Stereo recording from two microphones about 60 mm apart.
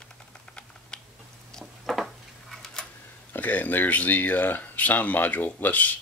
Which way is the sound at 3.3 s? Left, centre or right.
Left.